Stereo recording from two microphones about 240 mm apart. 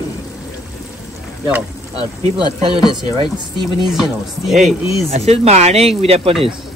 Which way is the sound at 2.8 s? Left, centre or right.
Centre.